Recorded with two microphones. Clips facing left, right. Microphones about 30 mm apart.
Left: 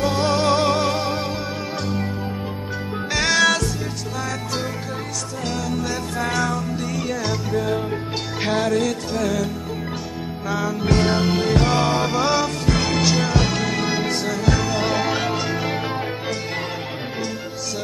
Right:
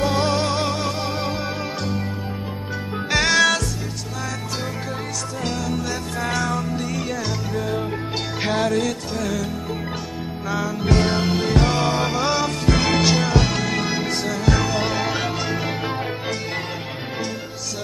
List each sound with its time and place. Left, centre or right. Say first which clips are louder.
0.0 s music: even; centre
0.7 s music: left 4 dB; centre
1.0 s music: left 1 dB; centre
3.2 s music: even; centre
5.4 s music: left 1 dB; centre
10.5 s music: even; centre
12.4 s music: right 1 dB; centre
13.2 s music: even; centre